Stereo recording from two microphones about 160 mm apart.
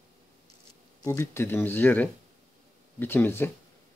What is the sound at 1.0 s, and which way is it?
Speech, 15° left (ahead or behind).